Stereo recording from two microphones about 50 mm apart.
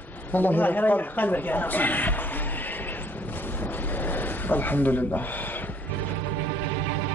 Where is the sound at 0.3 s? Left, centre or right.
Left.